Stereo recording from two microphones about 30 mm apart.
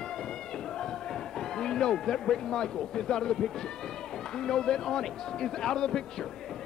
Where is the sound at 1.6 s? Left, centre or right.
Centre.